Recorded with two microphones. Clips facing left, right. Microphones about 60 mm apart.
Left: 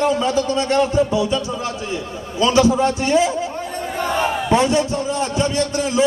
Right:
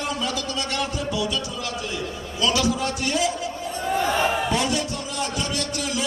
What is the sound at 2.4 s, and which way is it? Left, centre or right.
A man's voice, left.